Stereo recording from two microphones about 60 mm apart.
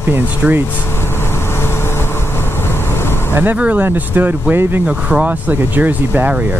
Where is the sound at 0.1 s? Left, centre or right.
Right.